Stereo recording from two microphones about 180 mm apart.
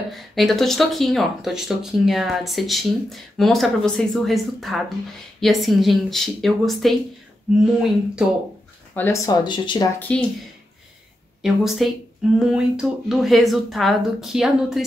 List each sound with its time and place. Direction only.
0.1 s speech: centre (ahead or behind)
8.9 s speech: 15° left (ahead or behind)
9.9 s speech: 10° left (ahead or behind)
11.4 s speech: centre (ahead or behind)